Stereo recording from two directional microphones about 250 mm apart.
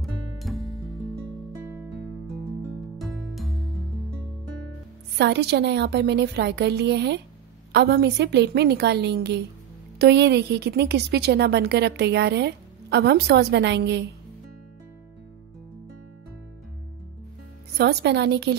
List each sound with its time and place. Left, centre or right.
0.0 s music: centre
1.8 s music: centre
5.1 s a woman's voice: right
17.7 s a woman's voice: right